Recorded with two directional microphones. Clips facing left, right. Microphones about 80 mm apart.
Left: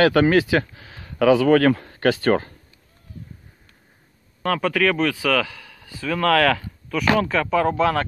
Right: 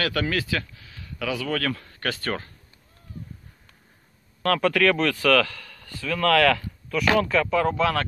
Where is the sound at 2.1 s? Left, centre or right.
Left.